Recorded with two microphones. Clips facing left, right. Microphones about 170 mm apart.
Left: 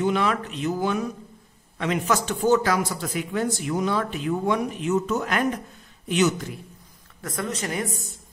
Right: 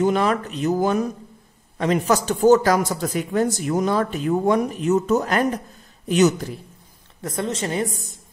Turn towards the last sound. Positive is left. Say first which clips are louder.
# right 4 dB
turn(degrees=-30)  # may be behind; listen again after turning